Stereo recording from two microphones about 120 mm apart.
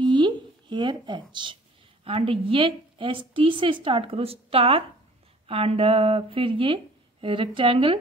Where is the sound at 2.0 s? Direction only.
50° right (ahead or behind).